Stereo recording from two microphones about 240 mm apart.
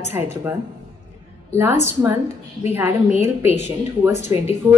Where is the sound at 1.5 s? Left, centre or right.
Centre.